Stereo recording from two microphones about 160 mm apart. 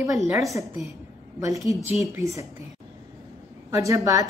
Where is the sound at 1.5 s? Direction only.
20° right (ahead or behind).